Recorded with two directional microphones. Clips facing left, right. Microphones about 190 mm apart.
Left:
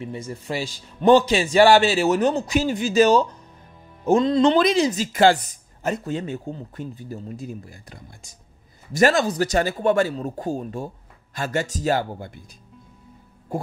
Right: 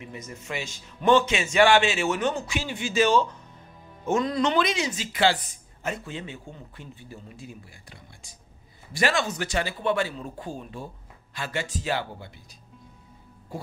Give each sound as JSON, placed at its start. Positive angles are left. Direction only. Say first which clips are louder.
{"t": 0.0, "sound": "speech", "louder": "left 8 dB", "side_deg": 30}
{"t": 4.0, "sound": "speech", "louder": "left 7 dB", "side_deg": 30}
{"t": 13.5, "sound": "music", "louder": "left 9 dB", "side_deg": 50}